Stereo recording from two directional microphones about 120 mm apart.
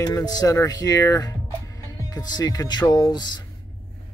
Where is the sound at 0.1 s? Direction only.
35° left (ahead or behind).